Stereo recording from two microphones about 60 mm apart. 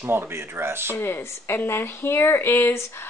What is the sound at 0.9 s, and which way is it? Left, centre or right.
Speech, left.